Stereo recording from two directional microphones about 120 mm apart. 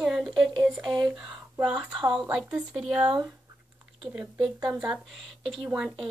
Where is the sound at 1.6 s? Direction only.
5° right (ahead or behind).